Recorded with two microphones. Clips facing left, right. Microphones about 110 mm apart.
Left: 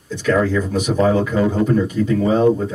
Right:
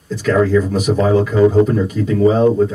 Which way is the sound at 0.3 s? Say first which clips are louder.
Right 3 dB; centre (ahead or behind).